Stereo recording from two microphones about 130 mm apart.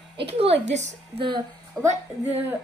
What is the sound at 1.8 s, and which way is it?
Speech, 20° right (ahead or behind).